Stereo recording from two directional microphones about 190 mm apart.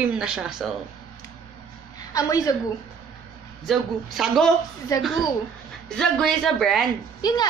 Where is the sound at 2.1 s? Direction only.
20° left (ahead or behind).